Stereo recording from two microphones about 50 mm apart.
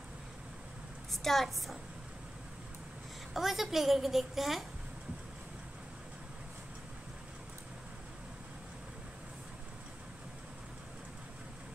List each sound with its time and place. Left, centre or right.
1.1 s a woman's voice: centre
3.3 s a woman's voice: centre